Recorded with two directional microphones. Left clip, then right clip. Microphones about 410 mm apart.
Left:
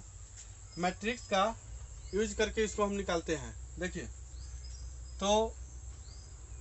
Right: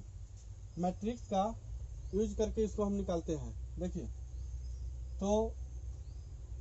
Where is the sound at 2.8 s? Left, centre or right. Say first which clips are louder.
Left 4 dB; left.